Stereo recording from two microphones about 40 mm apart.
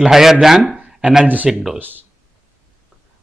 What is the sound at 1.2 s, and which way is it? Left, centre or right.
Speech, right.